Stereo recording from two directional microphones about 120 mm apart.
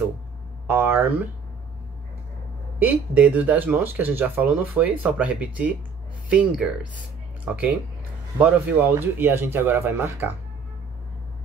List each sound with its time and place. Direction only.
0.7 s speech: 20° right (ahead or behind)
2.8 s speech: 15° right (ahead or behind)